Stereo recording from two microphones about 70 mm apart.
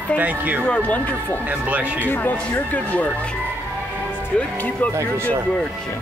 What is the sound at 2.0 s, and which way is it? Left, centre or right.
Speech, left.